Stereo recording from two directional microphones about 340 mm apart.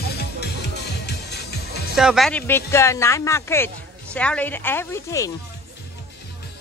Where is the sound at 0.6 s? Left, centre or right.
Left.